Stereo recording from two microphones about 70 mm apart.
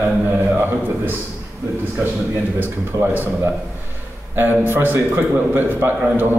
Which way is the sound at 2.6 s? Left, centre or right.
Right.